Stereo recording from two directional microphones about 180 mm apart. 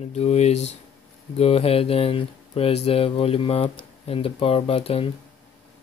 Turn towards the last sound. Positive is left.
turn(degrees=30)  # may be behind; listen again after turning